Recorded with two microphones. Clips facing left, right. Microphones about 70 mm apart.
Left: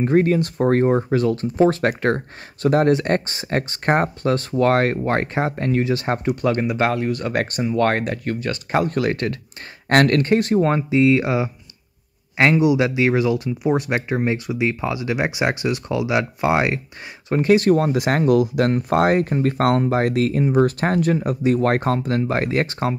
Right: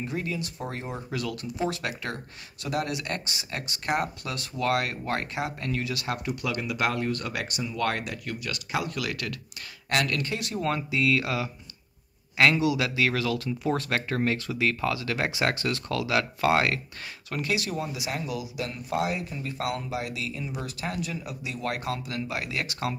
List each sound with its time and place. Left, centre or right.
0.0 s speech: left
1.1 s speech: left
6.9 s speech: left
7.2 s speech: left
9.8 s speech: left
17.3 s speech: left